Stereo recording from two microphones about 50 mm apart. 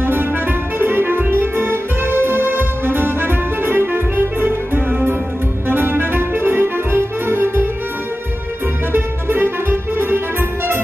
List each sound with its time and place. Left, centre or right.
0.0 s music: right
8.9 s music: right